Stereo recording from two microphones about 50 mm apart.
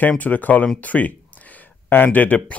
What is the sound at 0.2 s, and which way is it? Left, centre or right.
Speech, left.